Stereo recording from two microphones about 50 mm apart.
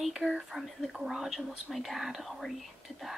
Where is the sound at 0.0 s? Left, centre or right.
Centre.